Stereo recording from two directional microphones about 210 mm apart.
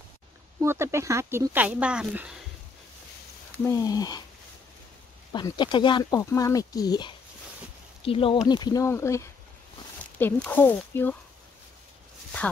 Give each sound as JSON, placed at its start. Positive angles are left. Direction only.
{"t": 0.6, "sound": "speech", "side_deg": -15}
{"t": 3.5, "sound": "speech", "side_deg": 15}
{"t": 5.3, "sound": "speech", "side_deg": 20}